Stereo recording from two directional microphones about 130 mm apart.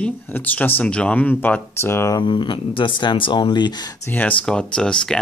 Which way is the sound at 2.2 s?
40° left (ahead or behind).